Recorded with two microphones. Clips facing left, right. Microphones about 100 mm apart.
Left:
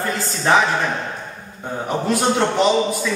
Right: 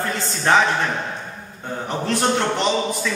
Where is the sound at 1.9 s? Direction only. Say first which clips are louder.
Left 2 dB; 10° left (ahead or behind).